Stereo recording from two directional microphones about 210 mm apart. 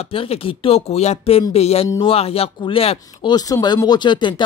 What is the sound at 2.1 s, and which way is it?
Speech, 30° left (ahead or behind).